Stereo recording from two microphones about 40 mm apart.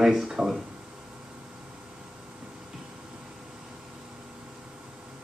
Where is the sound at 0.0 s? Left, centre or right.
Centre.